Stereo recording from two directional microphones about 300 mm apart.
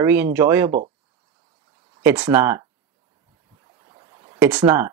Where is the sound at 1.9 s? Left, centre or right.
Centre.